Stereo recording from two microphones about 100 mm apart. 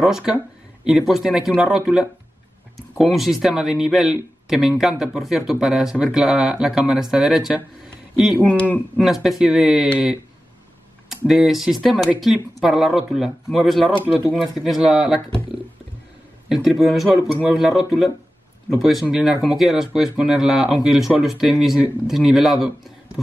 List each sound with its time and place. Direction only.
0.0 s speech: 5° right (ahead or behind)
8.4 s speech: 15° left (ahead or behind)
8.9 s speech: 5° right (ahead or behind)
11.2 s speech: centre (ahead or behind)
16.4 s speech: 5° right (ahead or behind)